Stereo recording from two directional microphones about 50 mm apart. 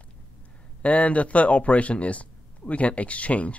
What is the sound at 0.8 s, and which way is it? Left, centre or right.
Speech, left.